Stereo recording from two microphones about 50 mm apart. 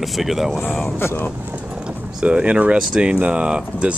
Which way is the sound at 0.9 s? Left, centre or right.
Left.